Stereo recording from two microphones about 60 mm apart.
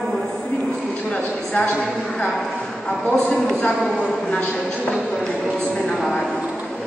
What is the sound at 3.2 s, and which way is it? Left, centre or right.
A man's voice, centre.